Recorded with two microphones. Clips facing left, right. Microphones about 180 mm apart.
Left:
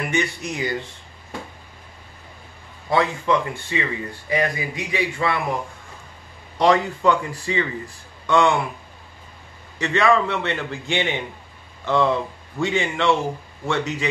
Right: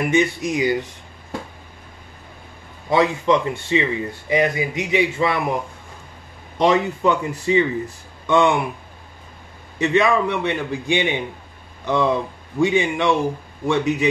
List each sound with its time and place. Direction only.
0.1 s a man's voice: 15° right (ahead or behind)
2.9 s speech: 20° right (ahead or behind)
6.6 s speech: 20° right (ahead or behind)
9.8 s a man's voice: 15° right (ahead or behind)